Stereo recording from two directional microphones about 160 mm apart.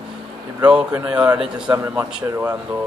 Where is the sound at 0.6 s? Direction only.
10° right (ahead or behind).